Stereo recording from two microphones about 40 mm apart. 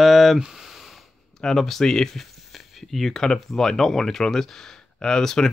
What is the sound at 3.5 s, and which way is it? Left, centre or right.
Speech, centre.